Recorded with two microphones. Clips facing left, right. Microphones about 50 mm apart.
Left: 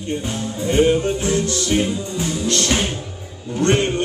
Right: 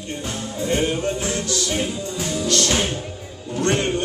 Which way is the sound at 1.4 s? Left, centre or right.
Left.